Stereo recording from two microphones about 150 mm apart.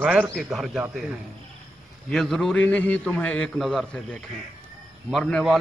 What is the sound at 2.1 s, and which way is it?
A man's voice, centre (ahead or behind).